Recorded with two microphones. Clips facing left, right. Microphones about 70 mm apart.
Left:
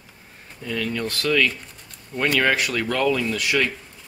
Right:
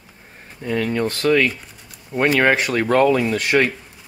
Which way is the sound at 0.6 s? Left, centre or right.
Right.